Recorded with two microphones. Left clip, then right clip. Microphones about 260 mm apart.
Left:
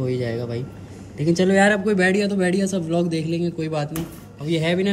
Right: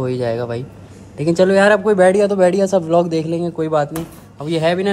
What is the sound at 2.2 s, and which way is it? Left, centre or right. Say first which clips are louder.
A man's voice: right 9 dB; centre.